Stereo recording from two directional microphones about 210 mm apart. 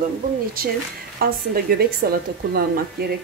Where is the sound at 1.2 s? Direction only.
45° right (ahead or behind).